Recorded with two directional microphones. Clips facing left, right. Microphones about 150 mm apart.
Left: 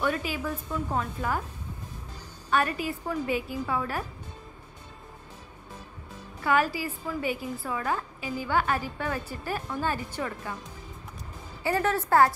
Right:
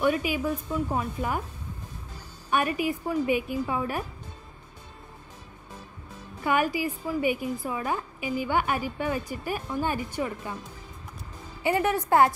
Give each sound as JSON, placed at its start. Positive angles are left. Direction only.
{"t": 0.0, "sound": "a woman's voice", "side_deg": -15}
{"t": 2.5, "sound": "a woman's voice", "side_deg": -15}
{"t": 6.4, "sound": "a woman's voice", "side_deg": -15}
{"t": 11.6, "sound": "a woman's voice", "side_deg": -15}